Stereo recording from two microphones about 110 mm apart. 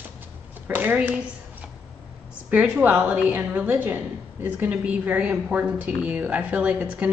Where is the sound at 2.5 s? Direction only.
15° right (ahead or behind).